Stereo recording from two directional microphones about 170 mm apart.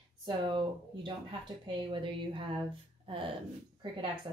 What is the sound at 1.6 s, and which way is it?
Speech, 30° right (ahead or behind).